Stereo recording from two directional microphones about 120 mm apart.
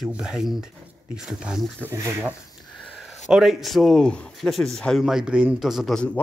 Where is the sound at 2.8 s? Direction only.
Centre (ahead or behind).